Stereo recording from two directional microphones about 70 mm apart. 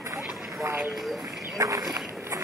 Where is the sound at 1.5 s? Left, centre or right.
Right.